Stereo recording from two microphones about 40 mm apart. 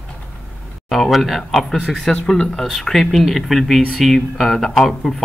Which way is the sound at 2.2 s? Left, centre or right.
Left.